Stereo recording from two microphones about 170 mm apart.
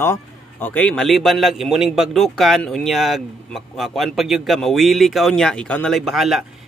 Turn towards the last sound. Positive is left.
turn(degrees=0)  # may be behind; listen again after turning